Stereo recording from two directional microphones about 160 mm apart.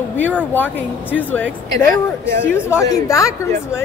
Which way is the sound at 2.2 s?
15° left (ahead or behind).